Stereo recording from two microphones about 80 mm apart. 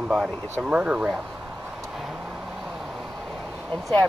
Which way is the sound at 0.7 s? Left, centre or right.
Centre.